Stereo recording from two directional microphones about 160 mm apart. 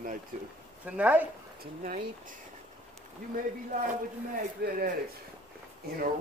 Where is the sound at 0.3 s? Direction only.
55° right (ahead or behind).